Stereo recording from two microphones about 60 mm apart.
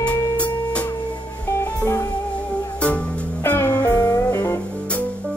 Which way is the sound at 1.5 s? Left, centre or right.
Left.